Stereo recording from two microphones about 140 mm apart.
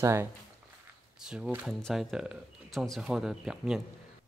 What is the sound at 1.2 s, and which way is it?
Speech, 5° right (ahead or behind).